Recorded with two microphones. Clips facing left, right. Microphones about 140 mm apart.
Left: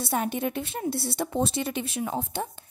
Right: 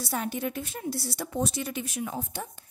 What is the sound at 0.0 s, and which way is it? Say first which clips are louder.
A woman's voice: left 3 dB; 25° left (ahead or behind).